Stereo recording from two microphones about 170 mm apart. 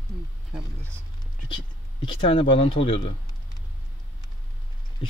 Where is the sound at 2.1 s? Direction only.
35° left (ahead or behind).